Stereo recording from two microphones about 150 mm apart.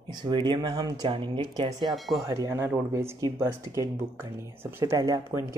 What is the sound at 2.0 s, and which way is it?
Speech, centre (ahead or behind).